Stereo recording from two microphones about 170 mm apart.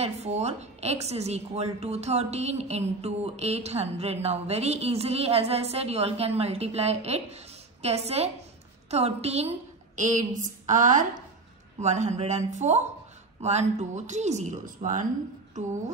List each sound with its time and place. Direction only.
0.0 s a woman's voice: 40° right (ahead or behind)